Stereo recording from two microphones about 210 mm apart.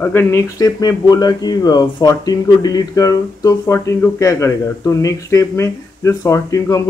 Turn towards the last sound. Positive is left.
turn(degrees=15)  # may be behind; listen again after turning